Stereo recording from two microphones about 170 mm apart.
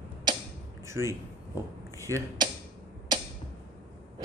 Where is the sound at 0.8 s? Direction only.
15° right (ahead or behind).